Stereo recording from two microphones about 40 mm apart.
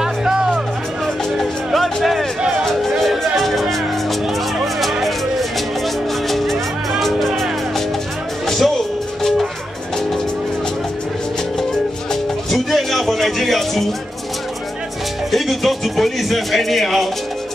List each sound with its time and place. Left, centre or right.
0.0 s music: centre
1.0 s music: centre
6.2 s music: centre
8.5 s music: centre
12.1 s music: centre
15.3 s speech: centre